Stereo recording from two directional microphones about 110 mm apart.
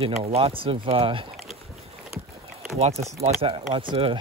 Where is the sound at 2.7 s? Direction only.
75° right (ahead or behind); by 4.1 s 50° right (ahead or behind).